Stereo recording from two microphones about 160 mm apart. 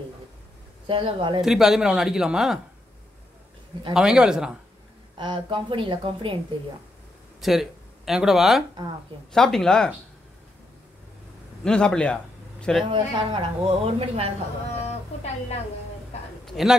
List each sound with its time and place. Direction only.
0.8 s a woman's voice: 30° right (ahead or behind)
1.4 s speech: centre (ahead or behind)
3.9 s speech: 5° right (ahead or behind)
5.1 s a woman's voice: 30° right (ahead or behind)
7.3 s speech: centre (ahead or behind)
11.6 s speech: 5° left (ahead or behind)
12.9 s a woman's voice: 35° right (ahead or behind)
16.4 s a sound: centre (ahead or behind)